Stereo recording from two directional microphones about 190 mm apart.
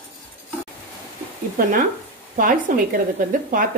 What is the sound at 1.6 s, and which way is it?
A woman's voice, 45° right (ahead or behind).